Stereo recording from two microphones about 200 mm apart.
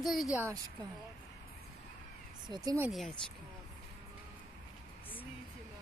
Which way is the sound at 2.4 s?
20° right (ahead or behind).